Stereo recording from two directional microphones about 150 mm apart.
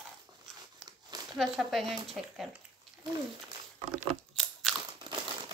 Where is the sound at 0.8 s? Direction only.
25° right (ahead or behind).